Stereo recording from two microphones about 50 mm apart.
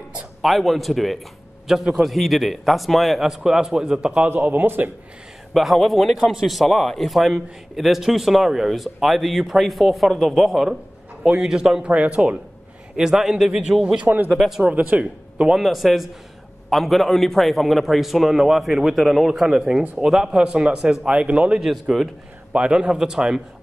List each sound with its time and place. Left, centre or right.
0.4 s a man's voice: centre
4.4 s speech: right
5.5 s a man's voice: centre
11.8 s speech: right
12.9 s a man's voice: centre
14.0 s speech: right
14.6 s speech: right
15.5 s a man's voice: centre
21.1 s speech: right
21.5 s a man's voice: centre
22.5 s a man's voice: right